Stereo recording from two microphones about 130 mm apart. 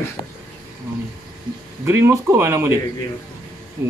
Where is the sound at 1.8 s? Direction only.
20° right (ahead or behind).